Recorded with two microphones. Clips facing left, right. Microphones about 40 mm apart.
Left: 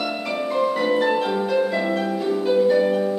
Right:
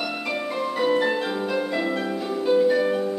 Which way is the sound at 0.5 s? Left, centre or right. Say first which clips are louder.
Left 3 dB; centre.